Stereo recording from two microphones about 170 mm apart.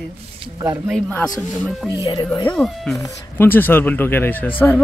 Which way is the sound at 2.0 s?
25° left (ahead or behind).